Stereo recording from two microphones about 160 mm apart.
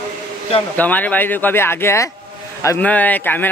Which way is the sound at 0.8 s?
10° left (ahead or behind).